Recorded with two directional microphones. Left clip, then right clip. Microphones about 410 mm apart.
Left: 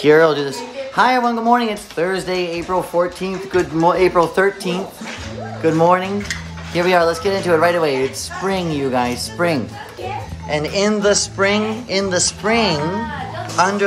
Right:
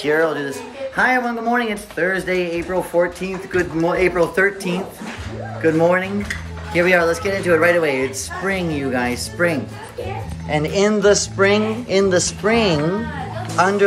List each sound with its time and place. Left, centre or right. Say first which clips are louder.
0.0 s speech: left 6 dB; left
5.6 s dishes: left 2 dB; centre
7.4 s speech: even; centre